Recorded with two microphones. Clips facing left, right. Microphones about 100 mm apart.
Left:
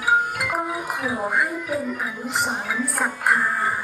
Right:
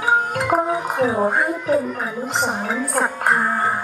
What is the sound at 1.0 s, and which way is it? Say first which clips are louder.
Speech: right 2 dB; 30° right (ahead or behind).